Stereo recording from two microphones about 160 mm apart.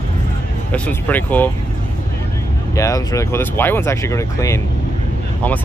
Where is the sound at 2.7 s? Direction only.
20° left (ahead or behind).